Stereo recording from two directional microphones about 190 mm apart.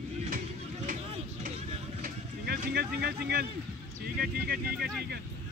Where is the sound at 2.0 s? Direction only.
55° right (ahead or behind).